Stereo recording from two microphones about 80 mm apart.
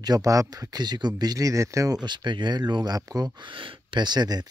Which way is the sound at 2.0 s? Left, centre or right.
Right.